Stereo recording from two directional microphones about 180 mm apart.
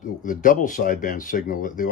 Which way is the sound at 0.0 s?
45° left (ahead or behind).